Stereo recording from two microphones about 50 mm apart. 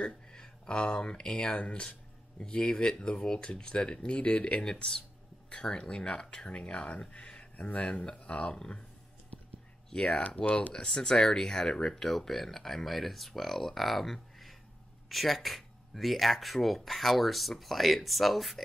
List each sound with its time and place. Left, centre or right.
0.0 s speech: centre
9.8 s speech: centre
10.7 s speech: centre